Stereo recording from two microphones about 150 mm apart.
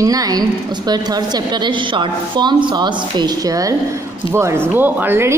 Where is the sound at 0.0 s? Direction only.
25° right (ahead or behind).